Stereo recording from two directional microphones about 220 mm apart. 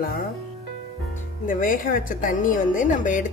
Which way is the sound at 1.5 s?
40° left (ahead or behind).